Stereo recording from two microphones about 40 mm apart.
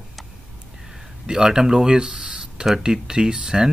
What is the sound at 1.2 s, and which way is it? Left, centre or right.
Speech, centre.